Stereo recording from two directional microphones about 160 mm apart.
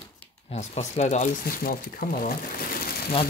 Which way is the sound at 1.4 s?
70° left (ahead or behind).